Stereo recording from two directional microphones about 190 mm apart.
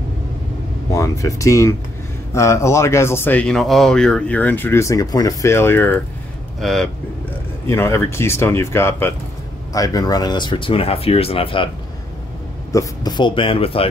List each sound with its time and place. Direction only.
0.9 s speech: 15° left (ahead or behind)
7.6 s speech: 15° left (ahead or behind)
12.7 s speech: 20° left (ahead or behind)